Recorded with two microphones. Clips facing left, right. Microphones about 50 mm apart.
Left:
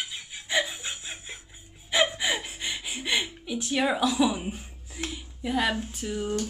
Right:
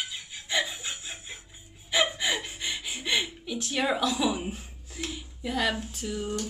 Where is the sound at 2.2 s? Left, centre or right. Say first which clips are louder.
Left 1 dB; centre.